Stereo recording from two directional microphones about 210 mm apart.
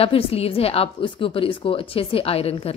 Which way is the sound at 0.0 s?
25° left (ahead or behind).